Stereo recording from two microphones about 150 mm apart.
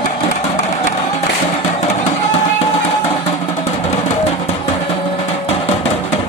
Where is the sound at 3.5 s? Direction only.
50° left (ahead or behind).